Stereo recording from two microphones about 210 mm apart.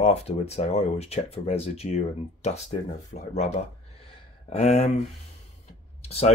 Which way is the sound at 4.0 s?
30° left (ahead or behind).